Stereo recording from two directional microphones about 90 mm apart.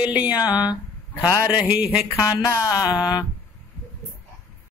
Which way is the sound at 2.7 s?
45° left (ahead or behind).